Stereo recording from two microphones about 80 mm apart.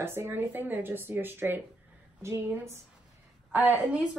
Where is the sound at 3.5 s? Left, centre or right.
Right.